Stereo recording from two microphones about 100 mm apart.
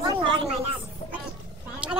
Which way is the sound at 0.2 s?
60° right (ahead or behind).